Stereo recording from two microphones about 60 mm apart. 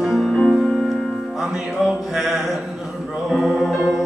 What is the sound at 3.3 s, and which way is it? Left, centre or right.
Music, centre.